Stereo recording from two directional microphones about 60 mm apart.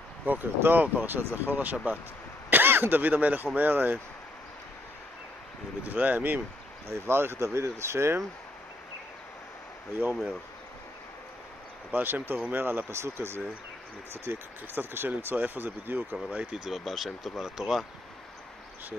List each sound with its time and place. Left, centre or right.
0.2 s speech: right
5.9 s speech: right
6.9 s speech: right
11.9 s speech: right
12.9 s speech: right
16.5 s speech: centre